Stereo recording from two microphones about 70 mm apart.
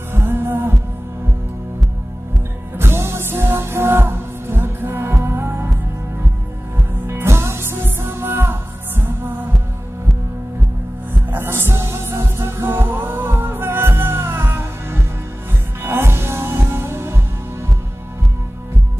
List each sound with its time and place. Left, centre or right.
0.1 s music: right
2.8 s music: right
7.1 s music: right
11.2 s music: right